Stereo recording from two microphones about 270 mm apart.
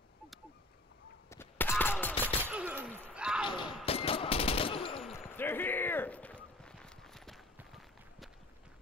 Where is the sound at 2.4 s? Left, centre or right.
Centre.